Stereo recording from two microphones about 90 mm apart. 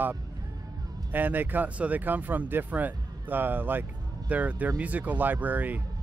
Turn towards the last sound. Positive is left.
turn(degrees=-20)  # may be behind; listen again after turning